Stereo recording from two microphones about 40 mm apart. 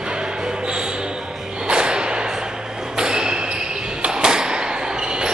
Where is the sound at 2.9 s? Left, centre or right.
Centre.